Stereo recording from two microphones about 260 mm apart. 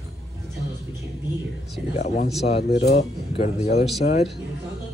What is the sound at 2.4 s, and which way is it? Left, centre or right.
Speech, left.